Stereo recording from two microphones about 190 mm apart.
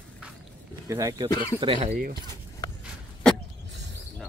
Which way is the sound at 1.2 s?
20° left (ahead or behind).